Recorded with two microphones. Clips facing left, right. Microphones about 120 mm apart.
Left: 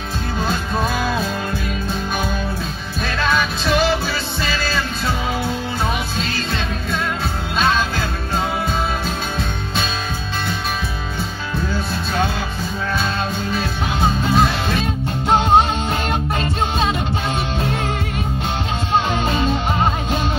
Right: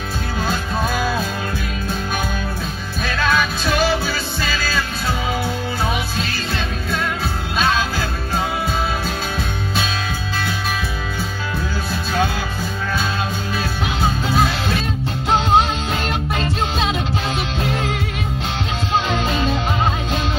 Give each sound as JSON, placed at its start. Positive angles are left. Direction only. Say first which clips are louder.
{"t": 3.1, "sound": "music", "louder": "right 1 dB", "side_deg": 0}
{"t": 6.1, "sound": "music", "louder": "left 1 dB", "side_deg": 0}
{"t": 14.3, "sound": "music", "louder": "left 1 dB", "side_deg": 0}
{"t": 19.1, "sound": "music", "louder": "left 1 dB", "side_deg": 35}